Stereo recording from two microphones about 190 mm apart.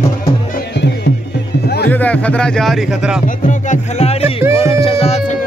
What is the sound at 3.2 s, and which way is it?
Music, 40° left (ahead or behind).